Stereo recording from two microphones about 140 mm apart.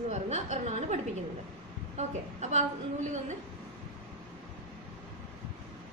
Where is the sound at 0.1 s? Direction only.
55° right (ahead or behind).